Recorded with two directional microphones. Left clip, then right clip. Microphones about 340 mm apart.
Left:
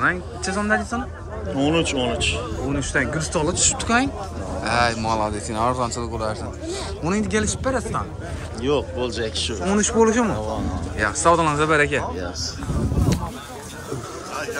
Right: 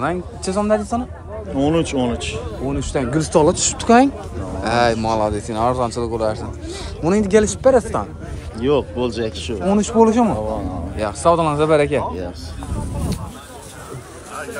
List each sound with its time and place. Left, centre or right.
0.0 s speech: centre
1.6 s speech: right
2.9 s speech: centre
8.5 s speech: centre